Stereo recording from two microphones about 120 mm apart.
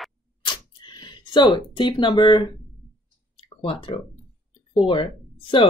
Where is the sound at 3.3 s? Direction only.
50° left (ahead or behind).